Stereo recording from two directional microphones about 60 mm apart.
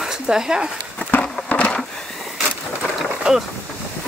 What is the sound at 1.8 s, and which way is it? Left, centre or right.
Skateboard, centre.